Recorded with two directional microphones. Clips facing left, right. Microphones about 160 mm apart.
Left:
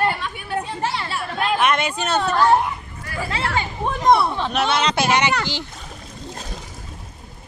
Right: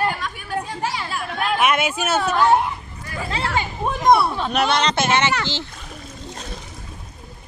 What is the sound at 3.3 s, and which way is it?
Speech, 20° right (ahead or behind).